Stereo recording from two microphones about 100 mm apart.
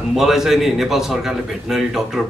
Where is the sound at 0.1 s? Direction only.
5° right (ahead or behind).